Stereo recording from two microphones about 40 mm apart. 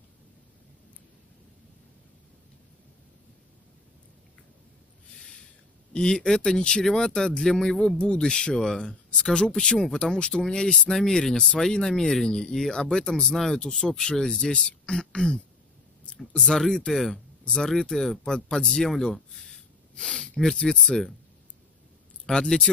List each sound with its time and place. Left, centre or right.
5.9 s speech: centre
16.9 s speech: centre
19.4 s snort: centre
20.3 s speech: centre
22.2 s speech: centre